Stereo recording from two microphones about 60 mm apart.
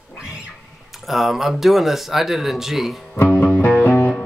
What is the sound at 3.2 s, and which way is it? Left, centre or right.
Music, left.